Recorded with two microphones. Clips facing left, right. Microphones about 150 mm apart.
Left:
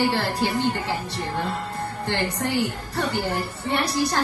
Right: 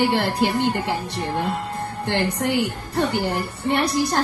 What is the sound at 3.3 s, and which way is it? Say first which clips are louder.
Music: right 3 dB; 55° right (ahead or behind).